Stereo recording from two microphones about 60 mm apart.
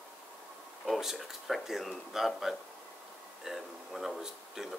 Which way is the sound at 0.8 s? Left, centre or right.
Centre.